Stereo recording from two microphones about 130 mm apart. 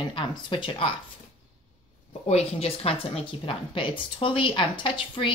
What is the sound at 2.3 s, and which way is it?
A woman's voice, 50° left (ahead or behind).